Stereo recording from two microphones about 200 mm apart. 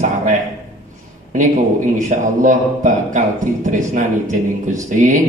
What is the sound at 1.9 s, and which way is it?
A man's voice, 40° right (ahead or behind).